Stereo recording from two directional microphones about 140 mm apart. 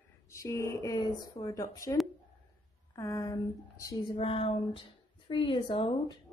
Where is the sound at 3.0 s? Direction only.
20° left (ahead or behind).